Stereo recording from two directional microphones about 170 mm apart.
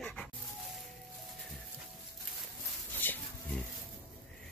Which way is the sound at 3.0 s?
10° left (ahead or behind).